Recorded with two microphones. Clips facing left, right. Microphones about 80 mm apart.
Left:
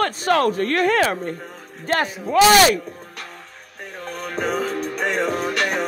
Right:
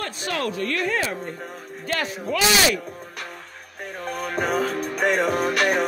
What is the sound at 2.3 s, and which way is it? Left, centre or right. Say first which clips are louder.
Speech: left 8 dB; left.